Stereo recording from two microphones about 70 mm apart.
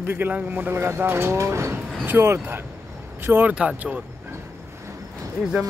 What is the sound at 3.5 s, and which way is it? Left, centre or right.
Speech, centre.